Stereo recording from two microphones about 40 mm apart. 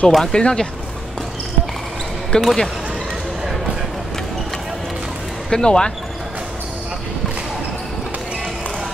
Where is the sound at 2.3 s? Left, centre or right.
Left.